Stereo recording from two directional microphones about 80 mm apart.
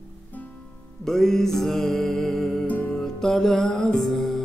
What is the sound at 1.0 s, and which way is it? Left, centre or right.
Music, centre.